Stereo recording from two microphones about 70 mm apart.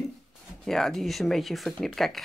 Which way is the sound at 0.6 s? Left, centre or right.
Centre.